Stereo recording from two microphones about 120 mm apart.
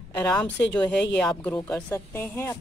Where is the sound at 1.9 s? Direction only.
20° left (ahead or behind).